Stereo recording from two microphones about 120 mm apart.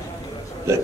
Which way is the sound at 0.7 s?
25° right (ahead or behind).